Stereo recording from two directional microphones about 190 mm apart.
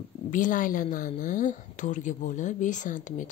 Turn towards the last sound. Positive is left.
turn(degrees=40)  # may be behind; listen again after turning